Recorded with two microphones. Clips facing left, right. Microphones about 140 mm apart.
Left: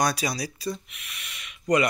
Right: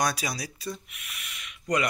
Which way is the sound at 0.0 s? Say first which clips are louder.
Left 3 dB; centre (ahead or behind).